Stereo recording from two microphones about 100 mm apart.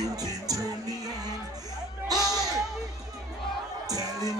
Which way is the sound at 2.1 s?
40° right (ahead or behind).